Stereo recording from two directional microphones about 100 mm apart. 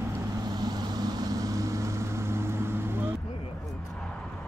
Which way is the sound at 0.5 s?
45° right (ahead or behind).